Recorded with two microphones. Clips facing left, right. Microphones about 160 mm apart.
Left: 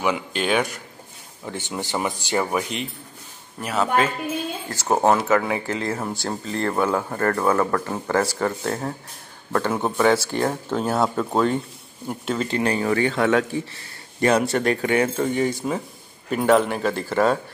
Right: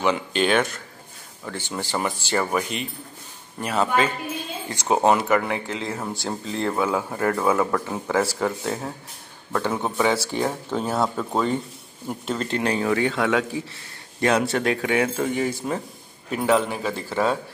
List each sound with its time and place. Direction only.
0.0 s speech: 10° left (ahead or behind)
3.6 s speech: centre (ahead or behind)